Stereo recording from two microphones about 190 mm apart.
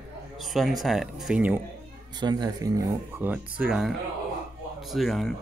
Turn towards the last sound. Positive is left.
turn(degrees=0)  # may be behind; listen again after turning